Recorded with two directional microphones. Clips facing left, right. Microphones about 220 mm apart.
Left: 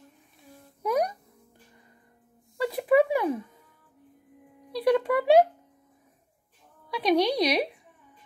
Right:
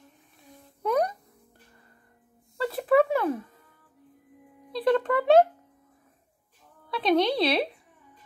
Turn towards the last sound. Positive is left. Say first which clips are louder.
# even
turn(degrees=15)  # may be behind; listen again after turning